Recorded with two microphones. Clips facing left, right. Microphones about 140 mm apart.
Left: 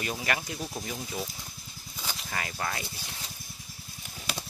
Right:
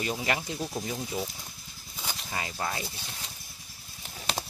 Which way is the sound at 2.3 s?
20° right (ahead or behind).